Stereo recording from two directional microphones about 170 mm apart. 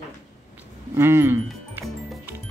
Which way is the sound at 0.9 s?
15° right (ahead or behind).